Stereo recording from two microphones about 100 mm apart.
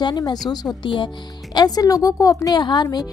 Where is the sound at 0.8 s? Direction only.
55° left (ahead or behind).